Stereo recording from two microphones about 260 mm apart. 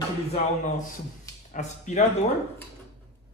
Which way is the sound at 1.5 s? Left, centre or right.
Left.